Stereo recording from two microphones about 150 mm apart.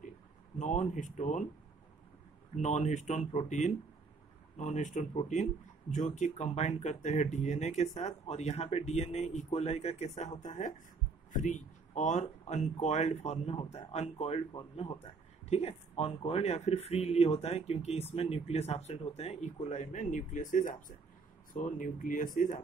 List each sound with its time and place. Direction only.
0.6 s speech: 55° left (ahead or behind)
2.5 s speech: 50° left (ahead or behind)